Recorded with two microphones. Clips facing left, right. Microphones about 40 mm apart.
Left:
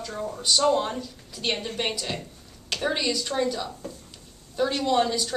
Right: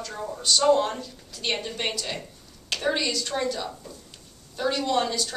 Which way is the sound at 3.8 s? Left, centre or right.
Left.